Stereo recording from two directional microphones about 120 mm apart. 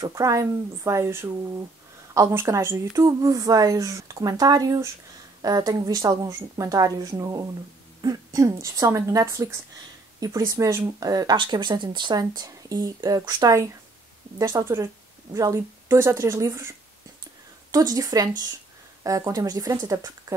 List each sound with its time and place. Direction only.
0.0 s a woman's voice: 25° right (ahead or behind)